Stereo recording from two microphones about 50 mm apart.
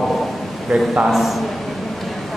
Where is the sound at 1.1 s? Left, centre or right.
Centre.